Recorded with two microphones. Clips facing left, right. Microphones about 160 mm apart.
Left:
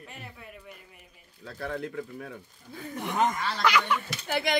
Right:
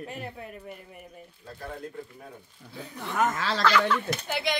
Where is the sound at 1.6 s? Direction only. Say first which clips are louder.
Left 5 dB; 75° left (ahead or behind).